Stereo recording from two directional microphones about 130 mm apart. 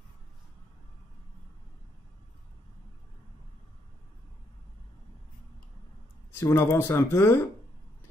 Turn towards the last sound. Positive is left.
turn(degrees=20)  # may be behind; listen again after turning